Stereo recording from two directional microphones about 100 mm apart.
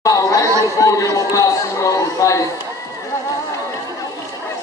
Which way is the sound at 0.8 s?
35° left (ahead or behind).